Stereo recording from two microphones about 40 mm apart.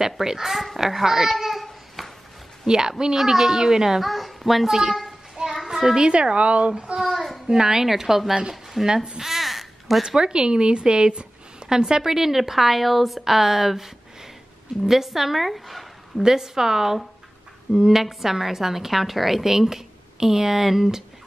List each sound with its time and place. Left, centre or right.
0.0 s a woman's voice: centre
0.7 s babbling: centre
2.6 s a woman's voice: centre
4.0 s speech: centre
5.3 s child singing: centre
5.7 s children playing: centre
6.0 s speech: right
7.0 s a sound: centre
7.4 s a woman's voice: centre
8.8 s speech: centre
9.2 s a sound: centre
10.0 s a woman's voice: right; by 15.9 s centre
16.2 s a woman's voice: centre